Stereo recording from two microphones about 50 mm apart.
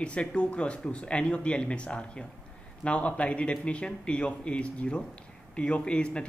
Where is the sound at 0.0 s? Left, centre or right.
Left.